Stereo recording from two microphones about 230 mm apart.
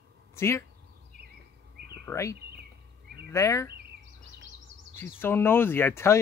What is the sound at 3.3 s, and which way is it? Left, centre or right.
Speech, centre.